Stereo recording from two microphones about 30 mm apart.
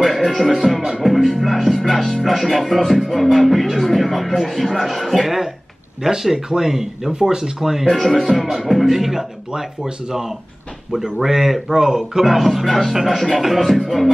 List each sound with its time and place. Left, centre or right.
0.2 s music: centre
0.6 s speech: centre
6.0 s speech: centre
7.9 s speech: centre
10.9 s speech: centre
12.2 s speech: centre